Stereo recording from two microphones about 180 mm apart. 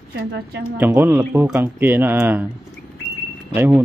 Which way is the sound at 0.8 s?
10° right (ahead or behind).